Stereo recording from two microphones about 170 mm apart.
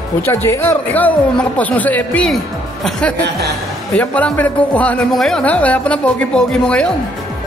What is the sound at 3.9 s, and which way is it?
A man's voice, 10° left (ahead or behind).